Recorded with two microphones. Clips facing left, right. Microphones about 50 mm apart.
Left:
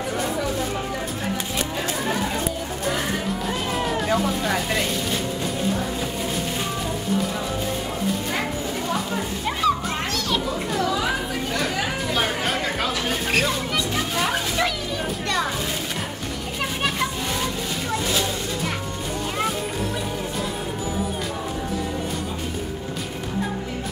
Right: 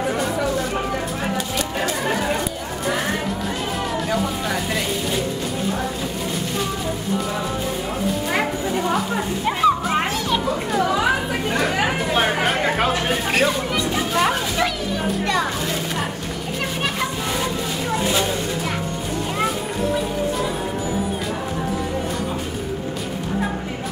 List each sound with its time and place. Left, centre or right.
4.1 s vehicle: centre
9.1 s children playing: centre
10.9 s chatter: right
11.7 s a sound: right
12.6 s chatter: right
13.3 s speech: centre
13.9 s children playing: centre
17.9 s a sound: centre